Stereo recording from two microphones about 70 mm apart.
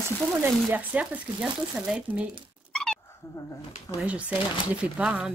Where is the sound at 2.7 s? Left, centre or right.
Centre.